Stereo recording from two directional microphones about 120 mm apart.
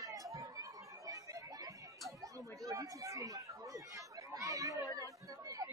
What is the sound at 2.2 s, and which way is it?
Chatter, 30° right (ahead or behind).